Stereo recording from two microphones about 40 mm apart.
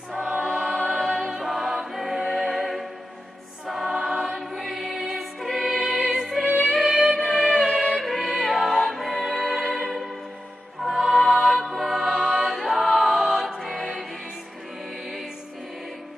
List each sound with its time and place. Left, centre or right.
0.5 s choir: centre
1.3 s music: centre
3.6 s choir: centre
4.5 s music: centre
12.0 s music: centre
12.4 s choir: centre
12.9 s music: centre